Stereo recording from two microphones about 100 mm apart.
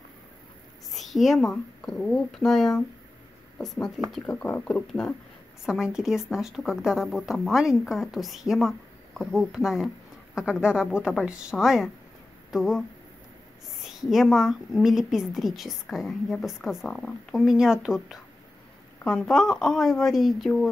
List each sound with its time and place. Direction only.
0.9 s a woman's voice: centre (ahead or behind)
5.7 s a woman's voice: 5° right (ahead or behind)
13.8 s a woman's voice: 5° right (ahead or behind)
19.0 s a woman's voice: 5° left (ahead or behind)